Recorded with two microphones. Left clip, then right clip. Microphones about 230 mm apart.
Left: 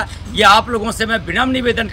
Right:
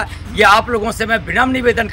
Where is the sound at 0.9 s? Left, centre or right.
Centre.